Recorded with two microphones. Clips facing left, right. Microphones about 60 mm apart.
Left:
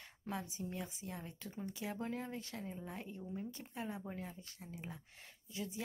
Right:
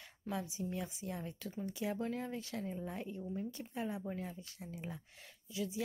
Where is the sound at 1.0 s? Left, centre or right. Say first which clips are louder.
Right 4 dB; centre.